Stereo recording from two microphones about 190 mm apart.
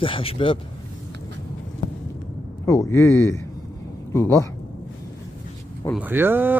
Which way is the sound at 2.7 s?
15° left (ahead or behind).